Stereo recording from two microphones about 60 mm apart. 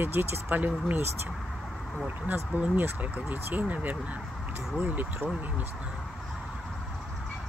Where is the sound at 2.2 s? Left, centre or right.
Right.